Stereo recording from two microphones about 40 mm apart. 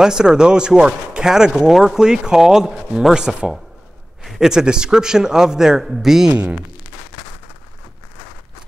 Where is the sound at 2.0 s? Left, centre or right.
Centre.